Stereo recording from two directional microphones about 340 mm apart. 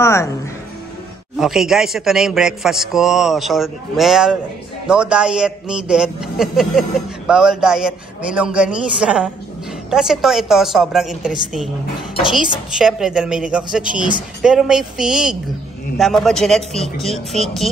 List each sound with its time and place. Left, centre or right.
0.0 s speech: centre
1.4 s a man's voice: centre